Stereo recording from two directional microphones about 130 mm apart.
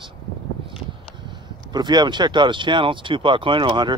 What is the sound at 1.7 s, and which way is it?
Speech, 35° right (ahead or behind).